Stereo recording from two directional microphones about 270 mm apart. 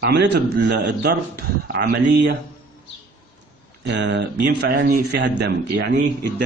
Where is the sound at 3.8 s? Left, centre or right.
Right.